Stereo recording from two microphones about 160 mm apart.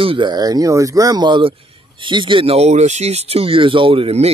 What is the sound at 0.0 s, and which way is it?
Speech, 30° right (ahead or behind).